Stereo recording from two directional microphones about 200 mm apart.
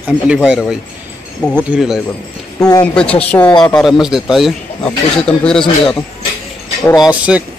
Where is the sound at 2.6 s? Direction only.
20° left (ahead or behind).